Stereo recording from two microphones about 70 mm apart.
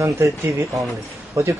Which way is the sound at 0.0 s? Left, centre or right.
Right.